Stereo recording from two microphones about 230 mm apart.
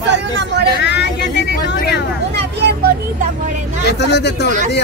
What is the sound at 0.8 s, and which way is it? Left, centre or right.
Speech, left.